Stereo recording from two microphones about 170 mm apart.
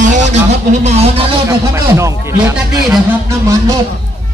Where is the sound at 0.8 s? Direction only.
35° right (ahead or behind).